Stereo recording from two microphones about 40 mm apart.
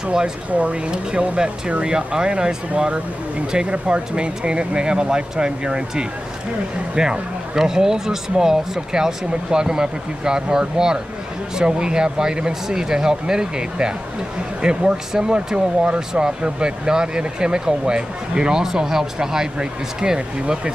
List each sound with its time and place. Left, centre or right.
0.0 s speech: right
0.5 s speech: right